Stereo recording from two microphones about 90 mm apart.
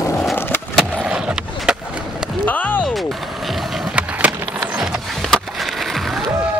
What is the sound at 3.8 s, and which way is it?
Skateboard, 15° right (ahead or behind).